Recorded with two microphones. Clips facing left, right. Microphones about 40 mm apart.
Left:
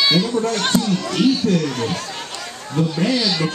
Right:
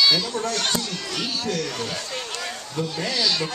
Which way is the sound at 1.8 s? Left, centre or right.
Left.